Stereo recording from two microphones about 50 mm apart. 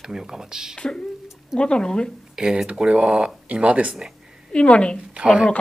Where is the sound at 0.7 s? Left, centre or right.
Centre.